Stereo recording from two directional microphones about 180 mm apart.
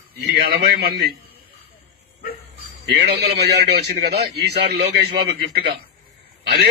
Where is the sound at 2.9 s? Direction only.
65° right (ahead or behind).